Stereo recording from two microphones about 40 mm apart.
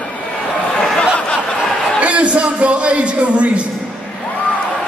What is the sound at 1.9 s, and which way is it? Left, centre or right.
A man's voice, right.